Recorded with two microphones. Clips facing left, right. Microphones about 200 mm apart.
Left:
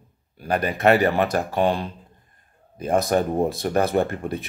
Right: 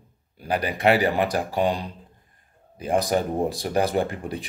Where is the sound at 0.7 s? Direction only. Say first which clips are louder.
Left 2 dB; 10° right (ahead or behind).